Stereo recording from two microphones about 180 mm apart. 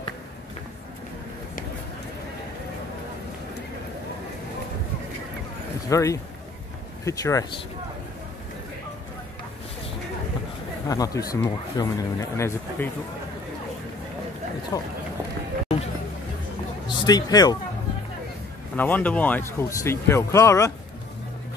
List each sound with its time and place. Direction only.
5.9 s speech: 15° left (ahead or behind)
10.9 s speech: 20° left (ahead or behind)
14.7 s speech: 20° left (ahead or behind)
17.0 s speech: 20° left (ahead or behind)
18.8 s speech: 10° left (ahead or behind)